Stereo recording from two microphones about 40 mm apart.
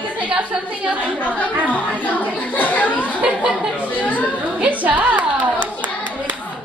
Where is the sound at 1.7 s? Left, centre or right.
Left.